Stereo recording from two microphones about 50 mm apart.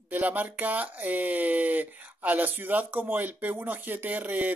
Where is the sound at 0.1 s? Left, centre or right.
Right.